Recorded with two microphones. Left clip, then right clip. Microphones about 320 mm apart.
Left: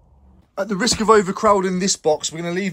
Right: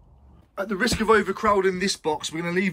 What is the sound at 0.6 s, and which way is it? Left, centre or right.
Speech, centre.